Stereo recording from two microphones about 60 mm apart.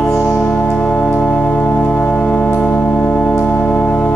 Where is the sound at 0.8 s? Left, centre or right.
Centre.